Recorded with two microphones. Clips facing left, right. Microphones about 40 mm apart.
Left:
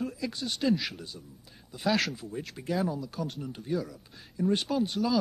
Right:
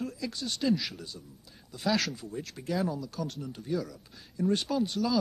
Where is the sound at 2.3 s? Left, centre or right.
Centre.